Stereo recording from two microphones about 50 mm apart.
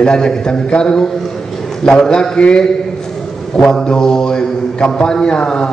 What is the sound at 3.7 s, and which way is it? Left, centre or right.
A man's voice, centre.